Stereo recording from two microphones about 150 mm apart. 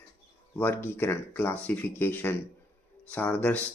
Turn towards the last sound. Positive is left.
turn(degrees=10)  # may be behind; listen again after turning